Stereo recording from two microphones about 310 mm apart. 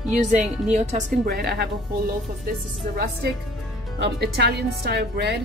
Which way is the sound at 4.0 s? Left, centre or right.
Right.